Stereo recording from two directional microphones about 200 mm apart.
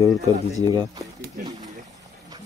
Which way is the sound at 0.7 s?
20° right (ahead or behind).